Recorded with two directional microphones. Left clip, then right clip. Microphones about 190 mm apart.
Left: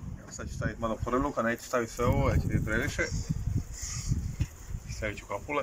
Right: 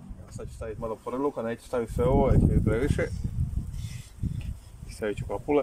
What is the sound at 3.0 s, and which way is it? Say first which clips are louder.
Speech: right 1 dB; 60° right (ahead or behind).